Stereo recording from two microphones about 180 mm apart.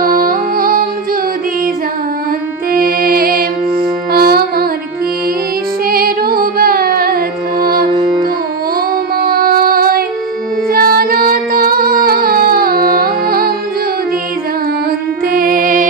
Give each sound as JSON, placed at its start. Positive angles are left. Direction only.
{"t": 0.0, "sound": "music", "side_deg": -55}
{"t": 2.7, "sound": "music", "side_deg": -55}
{"t": 5.9, "sound": "music", "side_deg": -55}
{"t": 7.9, "sound": "music", "side_deg": -25}
{"t": 9.1, "sound": "child singing", "side_deg": -55}
{"t": 10.7, "sound": "music", "side_deg": -55}
{"t": 15.3, "sound": "music", "side_deg": -50}